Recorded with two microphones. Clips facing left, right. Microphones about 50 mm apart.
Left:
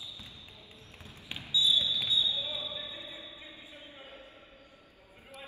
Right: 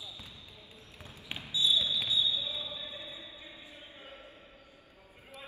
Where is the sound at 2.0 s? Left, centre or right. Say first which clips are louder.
Even; left.